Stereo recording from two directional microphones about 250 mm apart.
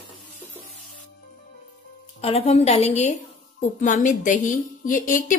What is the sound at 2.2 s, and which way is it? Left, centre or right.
A woman's voice, left.